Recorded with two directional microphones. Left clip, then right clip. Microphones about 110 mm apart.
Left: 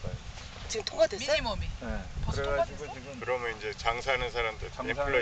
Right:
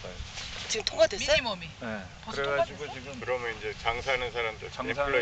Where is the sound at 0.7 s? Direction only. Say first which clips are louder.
Right 2 dB; 10° right (ahead or behind).